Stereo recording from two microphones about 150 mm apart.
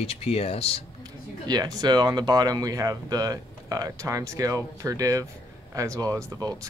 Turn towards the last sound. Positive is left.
turn(degrees=-25)  # may be behind; listen again after turning